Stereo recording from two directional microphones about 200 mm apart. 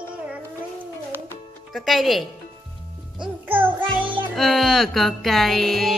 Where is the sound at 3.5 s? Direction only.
10° right (ahead or behind).